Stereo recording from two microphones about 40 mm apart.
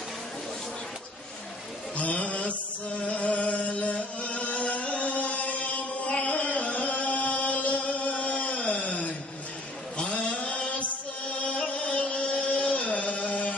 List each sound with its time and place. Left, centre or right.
2.0 s mantra: left
3.0 s music: left
4.2 s chant: left
6.2 s music: left
9.9 s mantra: left
11.4 s a sound: left